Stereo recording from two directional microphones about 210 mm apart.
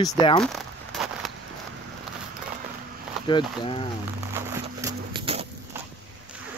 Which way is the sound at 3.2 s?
25° left (ahead or behind).